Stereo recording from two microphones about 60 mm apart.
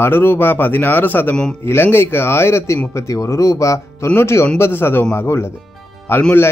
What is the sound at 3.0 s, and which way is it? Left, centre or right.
Speech, left.